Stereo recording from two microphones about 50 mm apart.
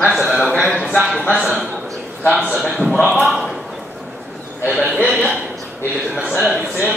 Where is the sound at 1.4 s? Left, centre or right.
Centre.